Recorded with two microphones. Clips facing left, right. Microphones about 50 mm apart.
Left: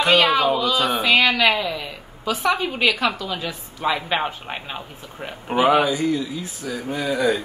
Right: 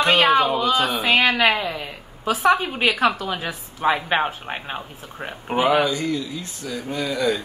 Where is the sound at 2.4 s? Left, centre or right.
Right.